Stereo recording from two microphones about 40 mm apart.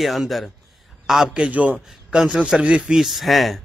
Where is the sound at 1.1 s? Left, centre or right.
Centre.